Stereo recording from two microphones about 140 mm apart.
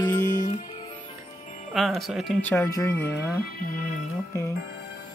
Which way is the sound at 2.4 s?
15° left (ahead or behind).